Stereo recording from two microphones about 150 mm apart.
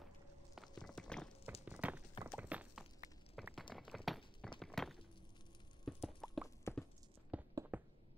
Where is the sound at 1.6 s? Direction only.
10° right (ahead or behind).